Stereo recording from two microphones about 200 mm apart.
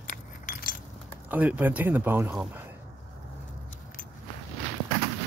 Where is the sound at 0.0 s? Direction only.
40° left (ahead or behind).